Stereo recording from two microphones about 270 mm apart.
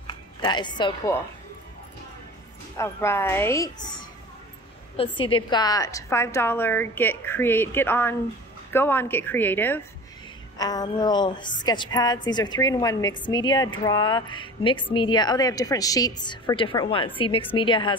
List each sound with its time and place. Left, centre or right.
0.0 s speech: centre
2.8 s a woman's voice: centre
4.9 s a woman's voice: centre